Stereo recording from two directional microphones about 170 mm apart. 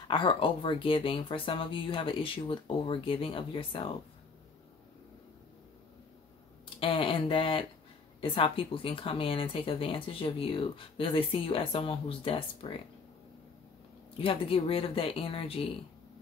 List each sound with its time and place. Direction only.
0.1 s speech: 30° left (ahead or behind)
6.8 s speech: 30° left (ahead or behind)
14.1 s speech: 30° left (ahead or behind)